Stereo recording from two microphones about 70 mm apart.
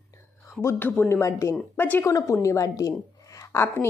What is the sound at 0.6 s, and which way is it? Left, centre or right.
Speech, left.